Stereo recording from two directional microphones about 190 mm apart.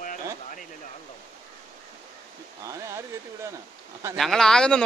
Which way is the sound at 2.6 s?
15° right (ahead or behind).